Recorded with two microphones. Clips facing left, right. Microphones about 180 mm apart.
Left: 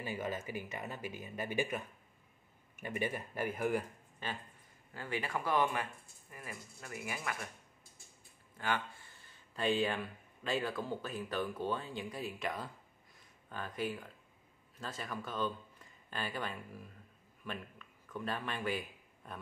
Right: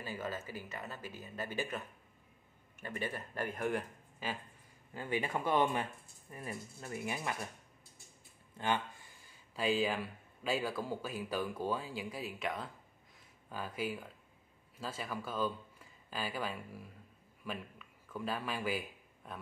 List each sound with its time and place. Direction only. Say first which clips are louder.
0.0 s speech: left 2 dB; 15° left (ahead or behind)
4.9 s speech: right 2 dB; 20° right (ahead or behind)
8.5 s a man's voice: right 2 dB; 20° right (ahead or behind); by 19.3 s 5° right (ahead or behind)